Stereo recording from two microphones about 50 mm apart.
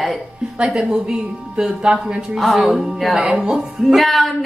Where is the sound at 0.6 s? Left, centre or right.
Centre.